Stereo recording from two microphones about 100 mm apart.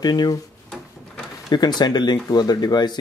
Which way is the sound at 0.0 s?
45° left (ahead or behind).